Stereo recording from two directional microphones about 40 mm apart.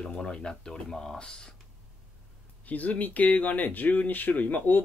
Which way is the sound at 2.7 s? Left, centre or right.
Left.